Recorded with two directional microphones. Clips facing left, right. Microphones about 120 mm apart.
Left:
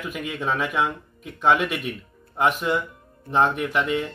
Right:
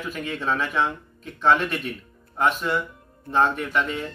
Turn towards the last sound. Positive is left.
turn(degrees=15)  # may be behind; listen again after turning